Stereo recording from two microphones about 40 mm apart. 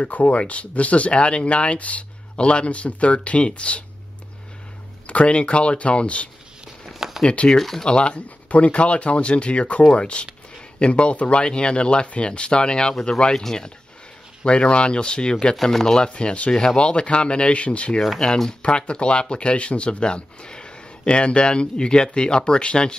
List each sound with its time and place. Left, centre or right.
0.0 s speech: left
5.0 s speech: left
6.9 s a sound: centre
7.4 s speech: centre
7.8 s speech: left
8.5 s speech: left; by 13.7 s centre
14.4 s speech: left
15.6 s speech: centre
16.1 s speech: left
18.2 s speech: centre
18.6 s speech: left